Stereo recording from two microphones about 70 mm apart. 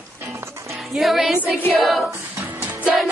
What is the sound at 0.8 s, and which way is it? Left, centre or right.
Speech, centre.